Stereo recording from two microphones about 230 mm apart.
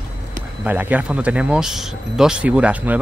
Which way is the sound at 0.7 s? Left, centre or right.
Centre.